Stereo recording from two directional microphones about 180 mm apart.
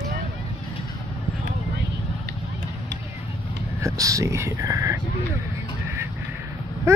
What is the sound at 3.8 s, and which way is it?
Speech, 20° right (ahead or behind).